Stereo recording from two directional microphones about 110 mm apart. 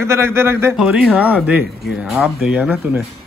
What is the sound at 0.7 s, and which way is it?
Speech, 5° right (ahead or behind).